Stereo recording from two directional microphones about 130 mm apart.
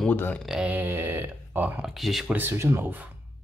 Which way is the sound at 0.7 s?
15° right (ahead or behind).